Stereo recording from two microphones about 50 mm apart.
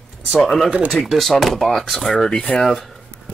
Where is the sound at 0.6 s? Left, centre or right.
Right.